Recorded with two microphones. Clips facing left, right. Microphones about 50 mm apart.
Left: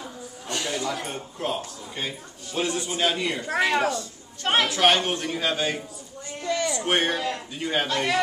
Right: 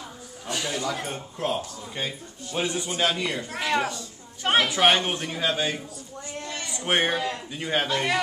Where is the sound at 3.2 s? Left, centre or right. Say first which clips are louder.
Left 5 dB; centre.